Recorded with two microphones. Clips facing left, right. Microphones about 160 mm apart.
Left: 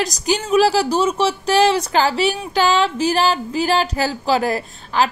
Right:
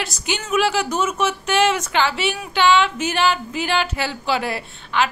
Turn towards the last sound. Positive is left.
turn(degrees=40)  # may be behind; listen again after turning